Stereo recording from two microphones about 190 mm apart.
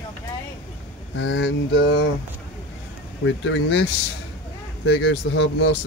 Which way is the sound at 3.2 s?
80° left.